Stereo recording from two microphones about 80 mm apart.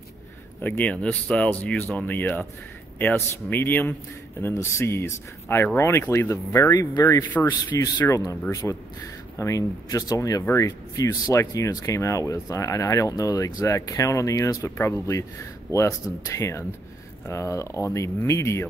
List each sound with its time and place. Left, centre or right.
0.6 s speech: left
7.2 s speech: left
7.7 s speech: left
8.1 s speech: left